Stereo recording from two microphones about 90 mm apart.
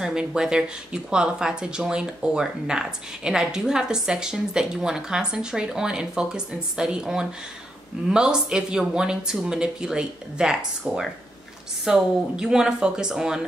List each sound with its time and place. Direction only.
0.0 s speech: 5° right (ahead or behind)